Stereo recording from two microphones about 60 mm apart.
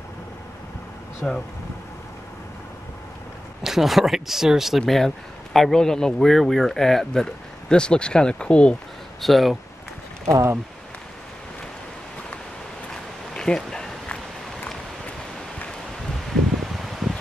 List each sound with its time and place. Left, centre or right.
1.2 s speech: centre
3.6 s speech: centre
9.2 s speech: centre
10.2 s speech: right
12.9 s a sound: centre
16.3 s rustling leaves: centre